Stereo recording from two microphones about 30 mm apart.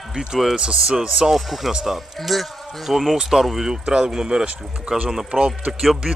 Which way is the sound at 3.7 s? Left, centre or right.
Right.